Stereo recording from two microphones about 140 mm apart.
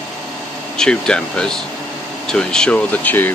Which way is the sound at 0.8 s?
5° left (ahead or behind).